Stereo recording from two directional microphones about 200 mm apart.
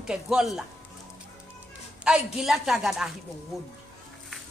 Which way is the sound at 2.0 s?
5° right (ahead or behind).